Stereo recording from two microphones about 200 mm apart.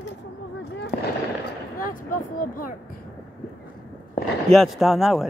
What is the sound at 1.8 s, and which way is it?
Vehicle, 45° left (ahead or behind).